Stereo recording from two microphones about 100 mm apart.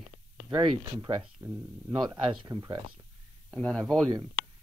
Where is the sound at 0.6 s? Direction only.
45° right (ahead or behind).